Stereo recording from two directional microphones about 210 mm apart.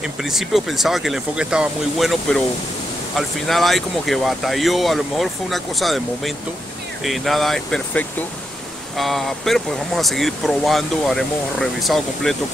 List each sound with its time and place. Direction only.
0.0 s speech: centre (ahead or behind)